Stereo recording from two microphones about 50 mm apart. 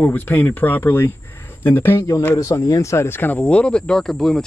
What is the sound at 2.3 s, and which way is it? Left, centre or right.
Speech, left.